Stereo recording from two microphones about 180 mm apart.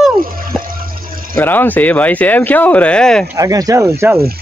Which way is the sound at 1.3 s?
10° left (ahead or behind).